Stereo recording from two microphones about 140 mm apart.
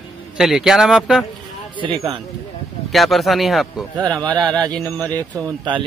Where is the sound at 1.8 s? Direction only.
30° right (ahead or behind).